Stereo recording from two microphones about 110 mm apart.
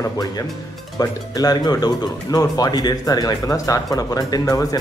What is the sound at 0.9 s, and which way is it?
Speech, 35° left (ahead or behind).